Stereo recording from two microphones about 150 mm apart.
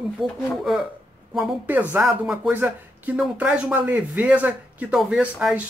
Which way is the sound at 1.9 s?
5° right (ahead or behind).